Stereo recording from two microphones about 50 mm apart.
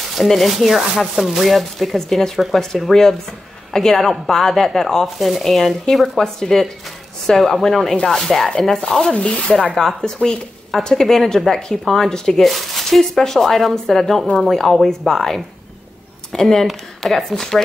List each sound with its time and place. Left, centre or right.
0.1 s a woman's voice: centre
9.1 s speech: left
9.8 s a woman's voice: centre